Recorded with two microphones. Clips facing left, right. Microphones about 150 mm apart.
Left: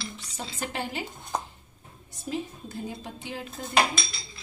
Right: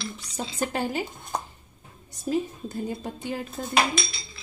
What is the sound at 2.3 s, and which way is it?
A woman's voice, 45° right (ahead or behind).